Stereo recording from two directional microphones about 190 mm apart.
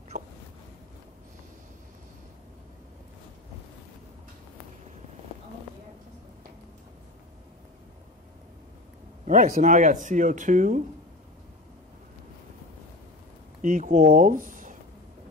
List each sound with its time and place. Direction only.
9.2 s speech: 45° right (ahead or behind)
13.6 s speech: 45° right (ahead or behind)